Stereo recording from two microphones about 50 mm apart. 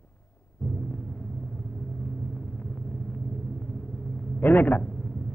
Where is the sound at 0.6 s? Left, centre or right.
Left.